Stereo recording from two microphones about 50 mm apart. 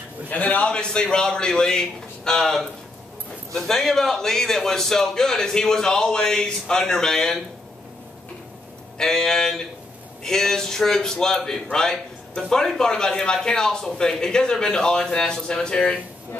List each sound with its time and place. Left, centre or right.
0.3 s a man's voice: left
0.7 s a man's voice: centre
8.9 s a man's voice: centre